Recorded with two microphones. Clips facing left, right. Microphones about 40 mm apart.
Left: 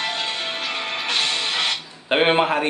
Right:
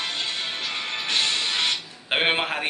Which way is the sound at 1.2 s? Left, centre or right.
Centre.